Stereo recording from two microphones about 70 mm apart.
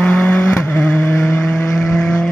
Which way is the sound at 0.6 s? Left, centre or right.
Left.